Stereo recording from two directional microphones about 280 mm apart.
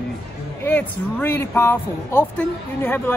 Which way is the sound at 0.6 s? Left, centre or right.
Centre.